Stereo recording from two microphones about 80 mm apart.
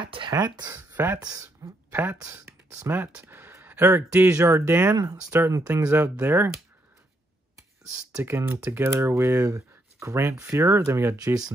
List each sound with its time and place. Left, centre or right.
0.0 s speech: right
0.3 s speech: right
0.7 s speech: right
1.1 s speech: right
1.9 s speech: right
2.9 s a sound: right
3.8 s speech: right
5.9 s speech: right
8.2 s speech: right
11.1 s speech: right